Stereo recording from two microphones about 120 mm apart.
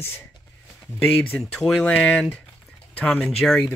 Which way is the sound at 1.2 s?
10° left (ahead or behind).